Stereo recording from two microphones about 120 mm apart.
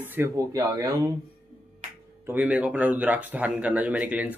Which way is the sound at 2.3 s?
10° right (ahead or behind).